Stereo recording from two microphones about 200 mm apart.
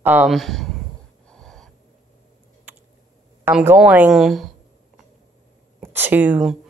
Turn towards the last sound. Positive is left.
turn(degrees=-5)  # may be behind; listen again after turning